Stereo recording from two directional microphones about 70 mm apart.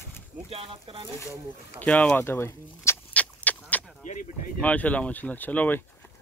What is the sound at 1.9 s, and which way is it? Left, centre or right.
Speech, centre.